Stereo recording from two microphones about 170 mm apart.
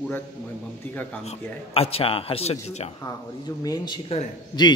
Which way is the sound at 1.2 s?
35° left (ahead or behind).